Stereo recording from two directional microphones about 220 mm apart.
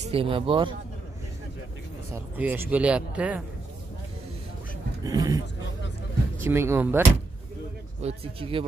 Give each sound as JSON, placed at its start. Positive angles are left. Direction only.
{"t": 0.0, "sound": "speech", "side_deg": -25}
{"t": 2.3, "sound": "speech", "side_deg": -10}
{"t": 5.0, "sound": "speech", "side_deg": -15}
{"t": 6.4, "sound": "speech", "side_deg": -10}
{"t": 8.0, "sound": "speech", "side_deg": -25}